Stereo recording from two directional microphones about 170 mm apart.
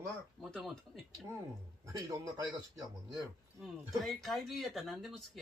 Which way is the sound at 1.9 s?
20° right (ahead or behind).